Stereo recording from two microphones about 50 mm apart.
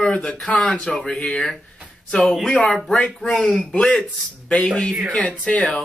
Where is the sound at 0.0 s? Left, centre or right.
Left.